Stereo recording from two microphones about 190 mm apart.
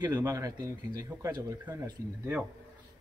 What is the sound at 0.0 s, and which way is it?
A man's voice, 20° right (ahead or behind).